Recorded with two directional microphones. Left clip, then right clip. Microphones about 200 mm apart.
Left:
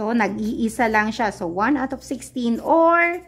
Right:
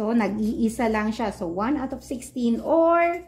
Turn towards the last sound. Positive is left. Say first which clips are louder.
# left 3 dB
turn(degrees=30)  # may be behind; listen again after turning